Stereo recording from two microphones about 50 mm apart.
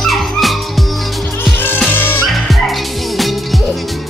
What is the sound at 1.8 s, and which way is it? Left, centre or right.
Music, left.